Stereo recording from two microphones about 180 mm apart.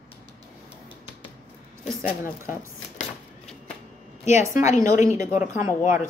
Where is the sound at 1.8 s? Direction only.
45° left (ahead or behind).